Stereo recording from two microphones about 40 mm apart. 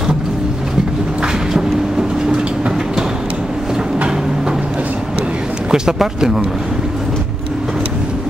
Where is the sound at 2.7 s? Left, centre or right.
Centre.